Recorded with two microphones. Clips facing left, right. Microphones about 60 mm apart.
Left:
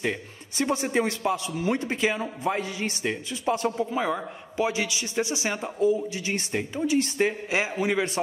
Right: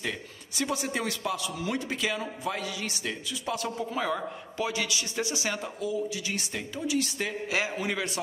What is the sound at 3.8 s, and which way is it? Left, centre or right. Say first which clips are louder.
Speech: left 3 dB; centre.